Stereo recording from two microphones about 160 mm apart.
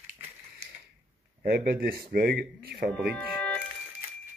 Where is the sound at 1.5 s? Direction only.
75° right (ahead or behind).